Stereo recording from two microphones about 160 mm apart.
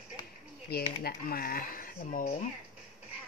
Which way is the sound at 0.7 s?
70° left (ahead or behind).